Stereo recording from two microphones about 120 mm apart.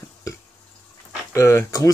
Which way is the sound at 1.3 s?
25° left (ahead or behind).